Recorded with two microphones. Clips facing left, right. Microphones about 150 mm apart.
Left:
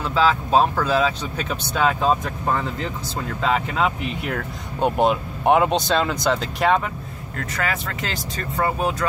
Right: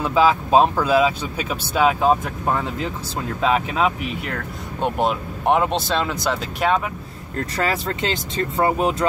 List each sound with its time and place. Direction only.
0.0 s speech: 15° right (ahead or behind)
3.3 s speech: 10° right (ahead or behind)
4.8 s speech: centre (ahead or behind)
7.3 s speech: 35° right (ahead or behind)